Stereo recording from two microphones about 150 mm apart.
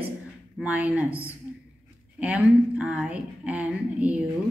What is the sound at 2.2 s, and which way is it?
A woman's voice, 10° right (ahead or behind).